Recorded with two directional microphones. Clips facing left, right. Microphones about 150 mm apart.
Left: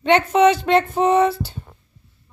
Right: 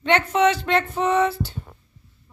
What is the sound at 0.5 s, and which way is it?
Speech, 20° left (ahead or behind).